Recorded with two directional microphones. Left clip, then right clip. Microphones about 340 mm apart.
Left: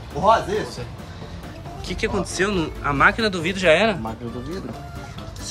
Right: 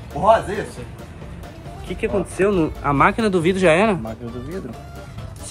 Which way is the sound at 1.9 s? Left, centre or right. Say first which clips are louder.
Right 2 dB; centre.